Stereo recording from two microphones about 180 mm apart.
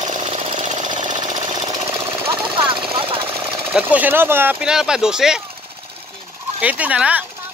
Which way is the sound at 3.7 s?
10° right (ahead or behind).